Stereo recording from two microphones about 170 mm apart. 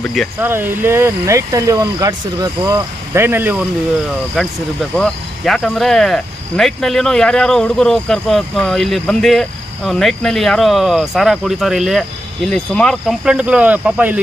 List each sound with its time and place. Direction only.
0.0 s speech: centre (ahead or behind)
0.4 s speech: 10° right (ahead or behind)
4.4 s speech: centre (ahead or behind)